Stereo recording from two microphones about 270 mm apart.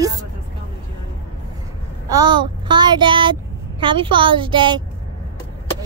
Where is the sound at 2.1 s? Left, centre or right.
Centre.